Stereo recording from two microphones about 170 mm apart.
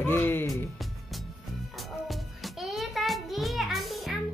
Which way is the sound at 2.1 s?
Centre (ahead or behind).